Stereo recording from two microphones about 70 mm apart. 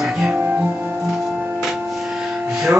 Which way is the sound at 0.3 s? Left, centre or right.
Centre.